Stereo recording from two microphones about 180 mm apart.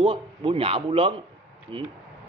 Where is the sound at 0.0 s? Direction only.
30° right (ahead or behind).